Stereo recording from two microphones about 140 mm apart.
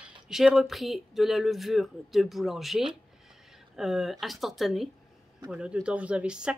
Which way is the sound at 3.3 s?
5° right (ahead or behind).